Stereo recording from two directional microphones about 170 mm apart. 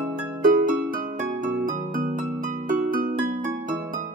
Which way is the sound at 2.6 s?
55° right (ahead or behind).